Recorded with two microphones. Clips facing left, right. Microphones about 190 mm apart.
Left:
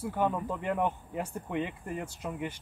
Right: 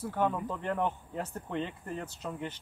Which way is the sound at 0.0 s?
10° left (ahead or behind).